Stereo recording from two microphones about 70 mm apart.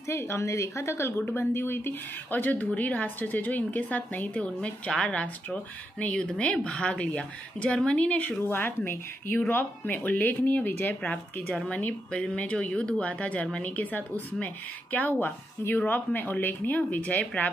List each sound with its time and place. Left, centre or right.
0.1 s a woman's voice: left
8.4 s a woman's voice: left